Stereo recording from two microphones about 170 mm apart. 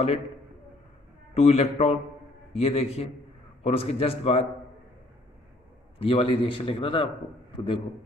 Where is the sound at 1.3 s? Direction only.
35° left (ahead or behind).